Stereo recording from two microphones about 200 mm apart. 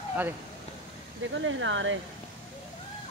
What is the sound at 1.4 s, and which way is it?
Speech, 70° right (ahead or behind).